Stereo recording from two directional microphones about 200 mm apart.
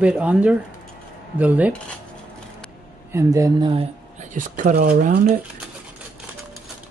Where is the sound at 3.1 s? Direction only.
15° right (ahead or behind).